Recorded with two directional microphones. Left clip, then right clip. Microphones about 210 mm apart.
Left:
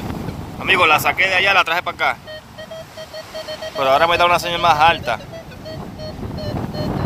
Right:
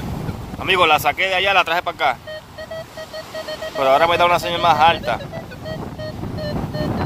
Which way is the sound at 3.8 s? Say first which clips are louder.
Even; 5° right (ahead or behind).